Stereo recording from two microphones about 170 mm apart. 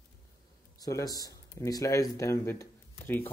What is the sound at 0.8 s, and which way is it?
Speech, 20° left (ahead or behind).